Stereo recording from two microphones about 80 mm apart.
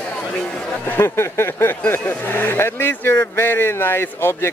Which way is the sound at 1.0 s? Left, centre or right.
Left.